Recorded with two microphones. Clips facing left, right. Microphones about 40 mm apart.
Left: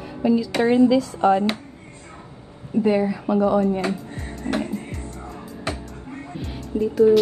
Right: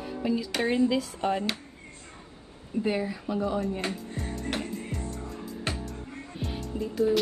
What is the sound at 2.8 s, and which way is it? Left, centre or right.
Speech, left.